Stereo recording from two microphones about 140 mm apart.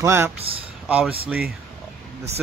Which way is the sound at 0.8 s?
10° right (ahead or behind).